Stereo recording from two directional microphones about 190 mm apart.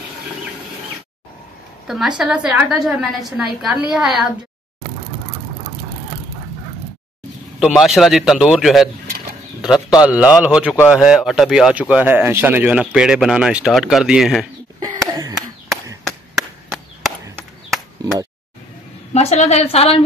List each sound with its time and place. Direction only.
1.9 s speech: 5° right (ahead or behind)
7.6 s a man's voice: centre (ahead or behind)
14.8 s a sound: 20° right (ahead or behind)
19.1 s a woman's voice: 35° left (ahead or behind)